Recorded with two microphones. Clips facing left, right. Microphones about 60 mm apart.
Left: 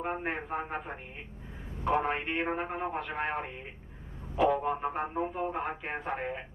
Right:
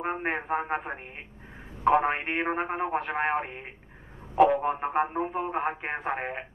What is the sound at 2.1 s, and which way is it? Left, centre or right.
Speech, right.